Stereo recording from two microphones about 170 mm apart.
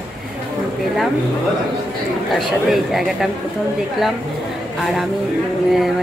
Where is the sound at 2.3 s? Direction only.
Centre (ahead or behind).